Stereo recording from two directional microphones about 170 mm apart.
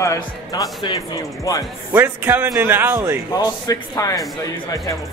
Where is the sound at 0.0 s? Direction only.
20° left (ahead or behind).